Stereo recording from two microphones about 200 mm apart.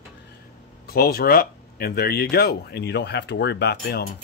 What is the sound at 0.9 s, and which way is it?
Speech, 50° left (ahead or behind).